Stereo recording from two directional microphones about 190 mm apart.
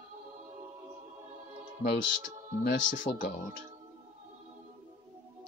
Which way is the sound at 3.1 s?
20° left (ahead or behind).